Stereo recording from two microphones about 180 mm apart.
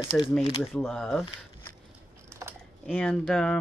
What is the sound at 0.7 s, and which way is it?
Speech, 5° left (ahead or behind).